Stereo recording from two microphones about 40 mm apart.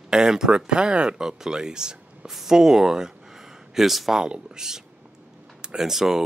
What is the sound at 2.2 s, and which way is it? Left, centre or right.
Speech, centre.